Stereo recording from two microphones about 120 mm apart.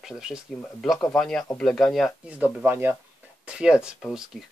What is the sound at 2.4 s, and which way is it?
Speech, 15° right (ahead or behind).